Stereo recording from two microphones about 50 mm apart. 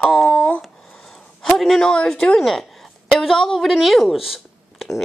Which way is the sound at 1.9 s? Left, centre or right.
Centre.